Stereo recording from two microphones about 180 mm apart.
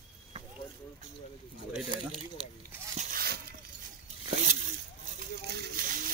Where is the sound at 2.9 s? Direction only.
50° right (ahead or behind).